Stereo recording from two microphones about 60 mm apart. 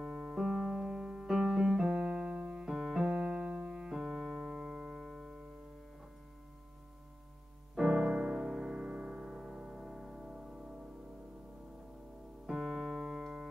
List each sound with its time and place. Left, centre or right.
0.0 s piano: centre
1.3 s music: centre
1.9 s keyboard: centre
7.7 s music: centre
12.4 s keyboard: centre